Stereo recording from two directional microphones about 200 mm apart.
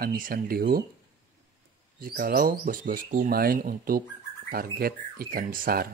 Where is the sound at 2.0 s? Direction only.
50° right (ahead or behind).